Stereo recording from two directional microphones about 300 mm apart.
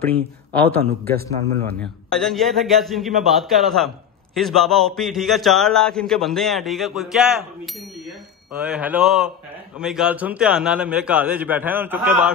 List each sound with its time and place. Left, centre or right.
1.0 s a man's voice: right
1.7 s a man's voice: centre